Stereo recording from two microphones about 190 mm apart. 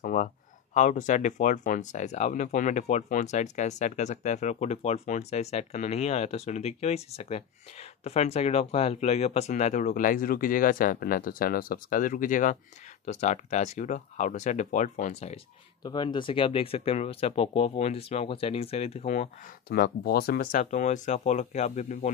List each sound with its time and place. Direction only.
0.0 s a sound: 45° left (ahead or behind)
0.7 s speech: 40° left (ahead or behind)
15.8 s speech: 25° left (ahead or behind)
19.7 s speech: 55° left (ahead or behind); by 22.1 s 40° left (ahead or behind)